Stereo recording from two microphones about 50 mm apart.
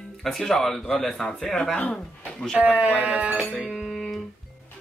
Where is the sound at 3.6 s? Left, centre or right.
Centre.